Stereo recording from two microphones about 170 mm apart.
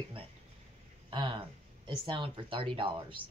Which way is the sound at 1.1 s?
30° right (ahead or behind).